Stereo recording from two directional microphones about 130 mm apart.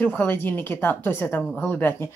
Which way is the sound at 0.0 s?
15° left (ahead or behind).